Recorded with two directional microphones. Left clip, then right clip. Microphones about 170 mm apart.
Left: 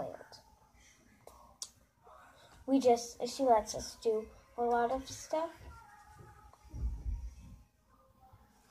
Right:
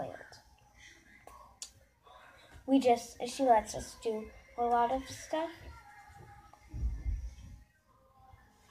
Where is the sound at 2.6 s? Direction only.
5° left (ahead or behind).